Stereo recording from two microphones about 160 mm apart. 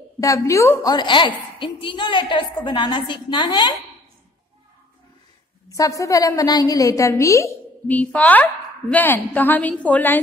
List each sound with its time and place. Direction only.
0.2 s a woman's voice: 20° left (ahead or behind)
5.7 s a woman's voice: 20° left (ahead or behind)